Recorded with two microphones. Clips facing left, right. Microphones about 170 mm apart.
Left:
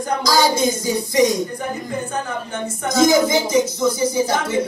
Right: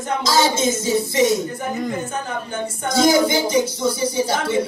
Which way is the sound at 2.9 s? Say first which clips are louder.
Left 1 dB; 30° right (ahead or behind).